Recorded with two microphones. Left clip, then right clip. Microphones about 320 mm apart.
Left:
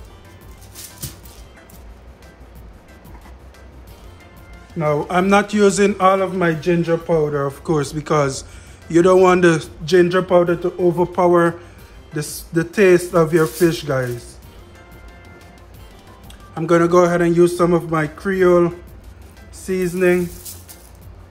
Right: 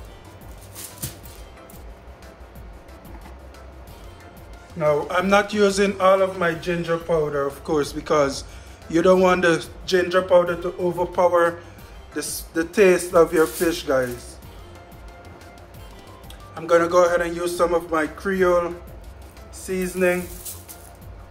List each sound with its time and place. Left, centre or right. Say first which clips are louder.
4.7 s a man's voice: left 2 dB; centre
16.5 s a man's voice: left 3 dB; centre